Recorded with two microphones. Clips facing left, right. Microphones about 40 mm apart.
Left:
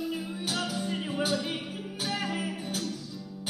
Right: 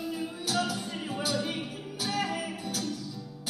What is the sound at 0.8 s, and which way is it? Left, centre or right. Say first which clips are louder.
Music: left 3 dB; centre.